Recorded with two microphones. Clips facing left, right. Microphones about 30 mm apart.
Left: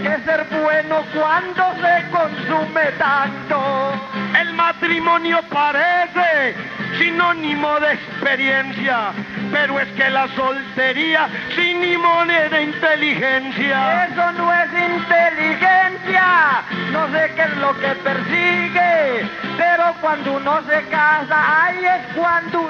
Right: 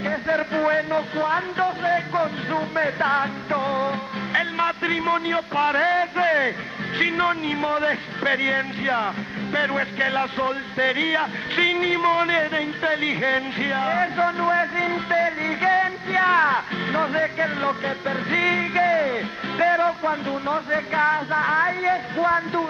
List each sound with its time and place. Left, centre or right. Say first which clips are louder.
0.0 s music: left 5 dB; left
0.4 s speech: left 4 dB; centre
18.3 s speech: left 3 dB; centre